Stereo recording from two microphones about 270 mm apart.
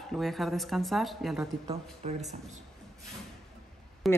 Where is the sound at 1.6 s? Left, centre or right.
Right.